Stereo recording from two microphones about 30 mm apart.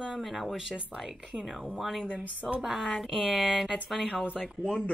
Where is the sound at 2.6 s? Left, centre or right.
Centre.